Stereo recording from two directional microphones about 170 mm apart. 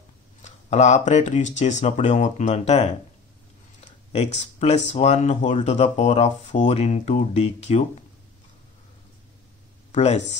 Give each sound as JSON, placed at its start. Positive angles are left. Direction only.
{"t": 0.4, "sound": "speech", "side_deg": 40}
{"t": 4.1, "sound": "speech", "side_deg": 40}
{"t": 9.9, "sound": "speech", "side_deg": 40}